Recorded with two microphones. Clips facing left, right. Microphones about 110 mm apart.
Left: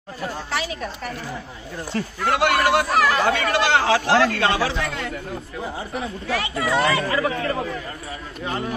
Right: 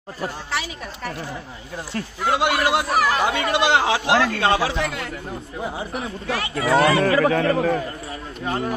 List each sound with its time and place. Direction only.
2.2 s a man's voice: 15° right (ahead or behind)
6.5 s speech: 70° right (ahead or behind)
7.2 s a man's voice: 55° right (ahead or behind)